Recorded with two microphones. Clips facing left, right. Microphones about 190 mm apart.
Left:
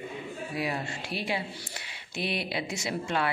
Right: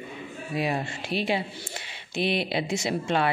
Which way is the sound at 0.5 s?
25° right (ahead or behind).